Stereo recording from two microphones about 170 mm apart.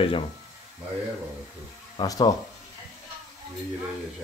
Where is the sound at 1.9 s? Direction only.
25° left (ahead or behind).